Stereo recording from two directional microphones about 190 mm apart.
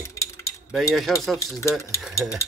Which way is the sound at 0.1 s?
15° left (ahead or behind).